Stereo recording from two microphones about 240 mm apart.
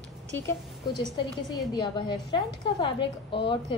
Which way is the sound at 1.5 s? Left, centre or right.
Centre.